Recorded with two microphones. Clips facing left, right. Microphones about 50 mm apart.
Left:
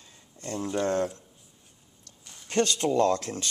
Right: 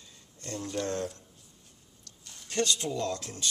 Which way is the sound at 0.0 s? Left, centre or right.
Left.